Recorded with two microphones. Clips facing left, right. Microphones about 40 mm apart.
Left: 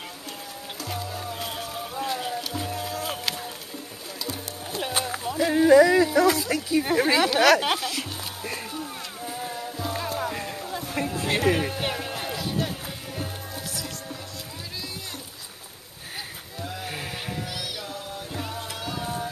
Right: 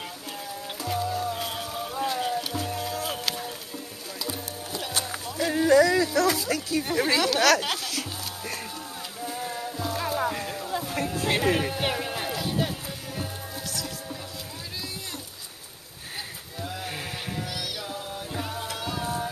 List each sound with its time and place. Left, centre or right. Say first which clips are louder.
0.8 s music: right 6 dB; centre
4.7 s music: left 4 dB; left
5.4 s a sound: left 3 dB; centre
6.3 s speech: left 3 dB; centre
7.8 s music: left 2 dB; centre
10.0 s a sound: right 2 dB; centre
16.5 s sheep: even; centre
17.8 s music: right 1 dB; centre